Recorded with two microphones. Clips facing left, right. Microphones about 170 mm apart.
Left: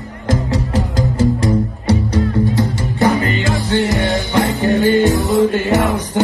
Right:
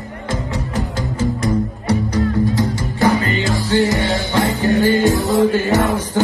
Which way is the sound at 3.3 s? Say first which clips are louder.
Even; 20° left (ahead or behind).